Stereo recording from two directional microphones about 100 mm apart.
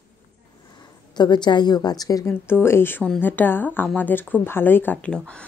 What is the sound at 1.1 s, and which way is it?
A woman's voice, 45° left (ahead or behind).